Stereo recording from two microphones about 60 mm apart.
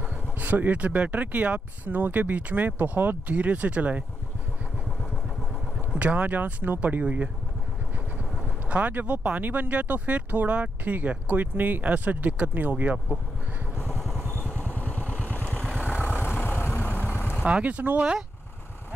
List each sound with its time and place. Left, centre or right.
0.4 s speech: right
5.8 s speech: right
14.8 s vehicle: left
17.4 s speech: right